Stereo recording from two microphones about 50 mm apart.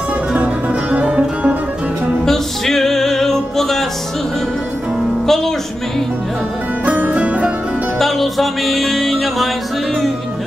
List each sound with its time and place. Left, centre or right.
0.8 s music: right
2.2 s music: centre
5.2 s music: centre
6.9 s music: right
8.0 s music: centre